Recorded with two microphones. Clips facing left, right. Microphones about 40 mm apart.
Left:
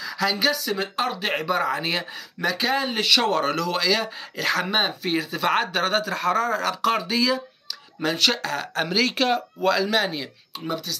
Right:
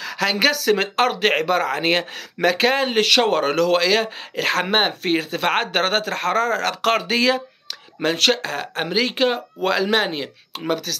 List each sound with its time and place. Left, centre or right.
0.0 s a sound: right
0.5 s speech: right
1.4 s speech: right
8.0 s speech: right
9.6 s speech: right
10.5 s speech: right